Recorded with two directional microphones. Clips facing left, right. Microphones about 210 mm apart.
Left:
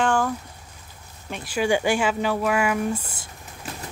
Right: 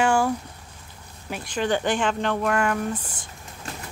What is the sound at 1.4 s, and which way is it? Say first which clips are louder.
Speech: left 2 dB; 10° left (ahead or behind).